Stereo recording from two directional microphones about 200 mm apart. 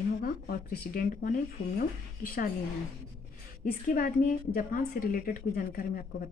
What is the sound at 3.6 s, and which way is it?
A woman's voice, 45° left (ahead or behind).